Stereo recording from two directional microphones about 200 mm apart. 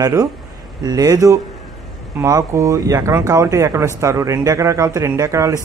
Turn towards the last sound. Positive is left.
turn(degrees=-15)  # may be behind; listen again after turning